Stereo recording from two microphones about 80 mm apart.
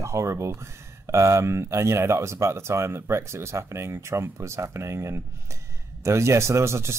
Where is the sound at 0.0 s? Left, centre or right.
Right.